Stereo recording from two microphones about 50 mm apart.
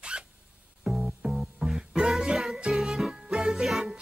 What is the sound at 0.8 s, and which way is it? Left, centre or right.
Music, centre.